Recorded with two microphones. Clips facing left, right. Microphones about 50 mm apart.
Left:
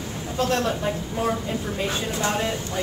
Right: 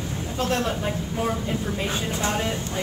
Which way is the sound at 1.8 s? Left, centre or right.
Right.